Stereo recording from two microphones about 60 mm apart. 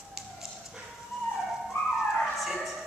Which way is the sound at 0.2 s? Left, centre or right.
Centre.